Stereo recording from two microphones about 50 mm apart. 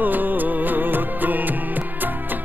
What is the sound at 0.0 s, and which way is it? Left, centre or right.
Music, right.